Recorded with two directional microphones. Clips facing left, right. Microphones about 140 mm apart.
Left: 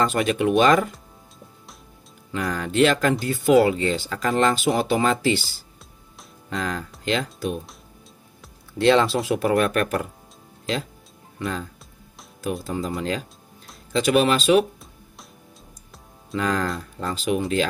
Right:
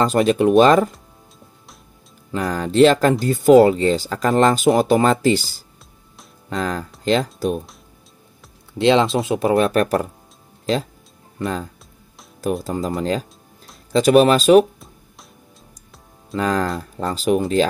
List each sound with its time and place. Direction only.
0.0 s speech: 35° right (ahead or behind)
2.3 s speech: 35° right (ahead or behind)
8.7 s speech: 20° right (ahead or behind)
11.3 s speech: 40° right (ahead or behind)
13.9 s speech: 40° right (ahead or behind)
16.3 s speech: 40° right (ahead or behind)